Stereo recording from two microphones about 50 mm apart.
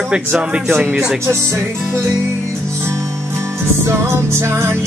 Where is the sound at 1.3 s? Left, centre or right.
Right.